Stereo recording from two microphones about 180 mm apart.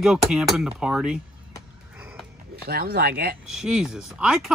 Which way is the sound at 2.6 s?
60° right (ahead or behind).